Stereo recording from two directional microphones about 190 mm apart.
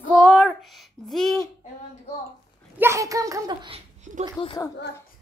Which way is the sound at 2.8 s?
15° right (ahead or behind).